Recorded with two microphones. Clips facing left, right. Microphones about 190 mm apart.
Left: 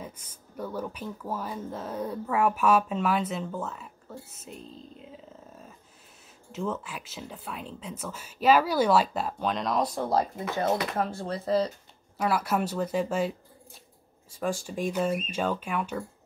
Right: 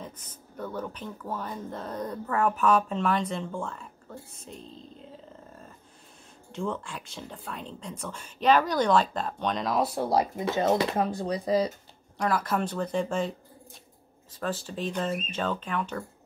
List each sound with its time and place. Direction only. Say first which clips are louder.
0.0 s speech: even; 10° left (ahead or behind); by 11.7 s 15° right (ahead or behind)
12.2 s speech: left 1 dB; 10° left (ahead or behind)
14.3 s speech: left 2 dB; 10° left (ahead or behind)